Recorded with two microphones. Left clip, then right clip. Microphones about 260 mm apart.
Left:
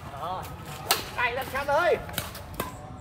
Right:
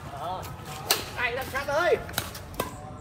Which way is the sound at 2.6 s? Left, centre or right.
Centre.